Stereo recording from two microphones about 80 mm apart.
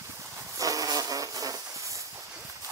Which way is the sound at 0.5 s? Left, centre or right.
Right.